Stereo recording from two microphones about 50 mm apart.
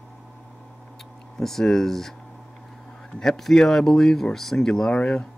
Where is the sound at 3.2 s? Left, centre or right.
Centre.